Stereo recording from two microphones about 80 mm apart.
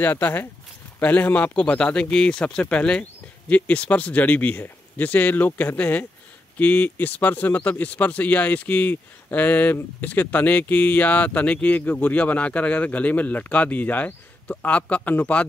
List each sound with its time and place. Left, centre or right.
0.0 s speech: left